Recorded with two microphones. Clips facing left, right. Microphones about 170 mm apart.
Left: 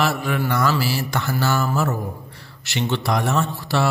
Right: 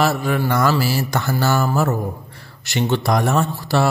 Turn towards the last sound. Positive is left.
turn(degrees=-45)  # may be behind; listen again after turning